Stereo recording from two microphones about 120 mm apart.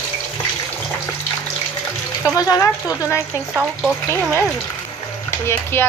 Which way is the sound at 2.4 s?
30° left (ahead or behind).